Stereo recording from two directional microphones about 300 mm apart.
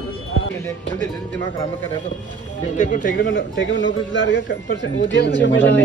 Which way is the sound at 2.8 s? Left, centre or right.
Left.